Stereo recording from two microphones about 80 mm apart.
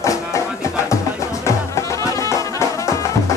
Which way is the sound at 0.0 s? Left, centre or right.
Left.